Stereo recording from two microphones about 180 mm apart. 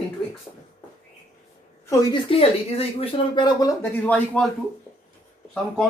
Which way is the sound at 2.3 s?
35° left (ahead or behind).